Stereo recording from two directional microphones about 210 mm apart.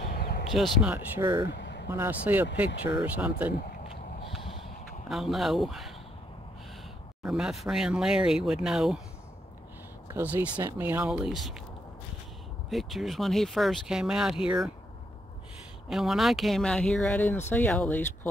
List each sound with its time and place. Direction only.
0.1 s a sound: 45° left (ahead or behind)
0.5 s speech: 5° right (ahead or behind)
1.5 s vehicle: 55° left (ahead or behind)
1.9 s speech: 10° right (ahead or behind)
5.1 s speech: centre (ahead or behind)
7.2 s speech: 5° right (ahead or behind)
10.0 s speech: 10° right (ahead or behind)
12.6 s speech: centre (ahead or behind)
15.9 s speech: centre (ahead or behind)